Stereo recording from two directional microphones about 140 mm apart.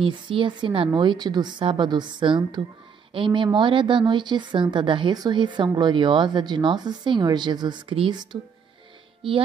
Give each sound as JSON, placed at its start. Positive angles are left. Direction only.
{"t": 0.0, "sound": "speech", "side_deg": -35}